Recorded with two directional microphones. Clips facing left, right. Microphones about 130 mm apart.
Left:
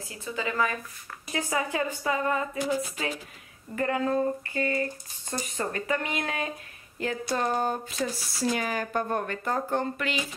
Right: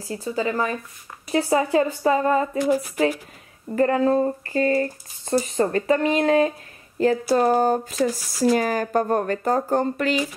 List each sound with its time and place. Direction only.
0.1 s speech: 35° right (ahead or behind)
3.7 s speech: 35° right (ahead or behind)